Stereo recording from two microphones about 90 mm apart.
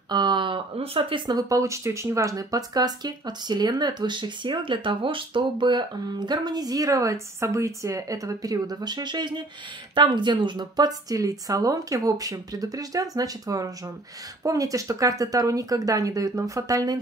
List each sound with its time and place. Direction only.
0.1 s speech: 55° right (ahead or behind)
1.5 s speech: 35° right (ahead or behind)